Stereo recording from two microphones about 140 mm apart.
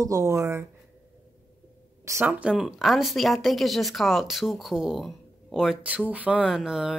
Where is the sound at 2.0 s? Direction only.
20° right (ahead or behind).